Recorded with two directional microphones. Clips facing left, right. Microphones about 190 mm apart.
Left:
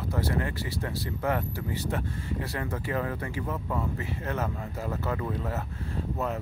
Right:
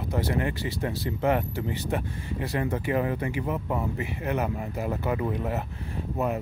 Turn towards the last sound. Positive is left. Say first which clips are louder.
# right 3 dB
turn(degrees=-15)  # may be behind; listen again after turning